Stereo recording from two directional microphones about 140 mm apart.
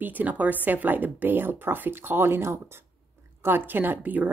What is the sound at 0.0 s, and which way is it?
A woman's voice, 10° right (ahead or behind).